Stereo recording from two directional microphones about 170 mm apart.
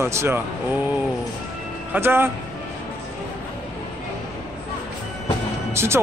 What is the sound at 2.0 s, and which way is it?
Speech, 15° right (ahead or behind).